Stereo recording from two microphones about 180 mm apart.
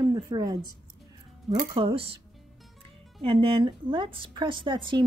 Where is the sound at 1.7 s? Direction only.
30° right (ahead or behind).